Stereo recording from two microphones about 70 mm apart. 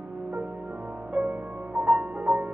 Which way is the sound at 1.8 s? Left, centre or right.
Right.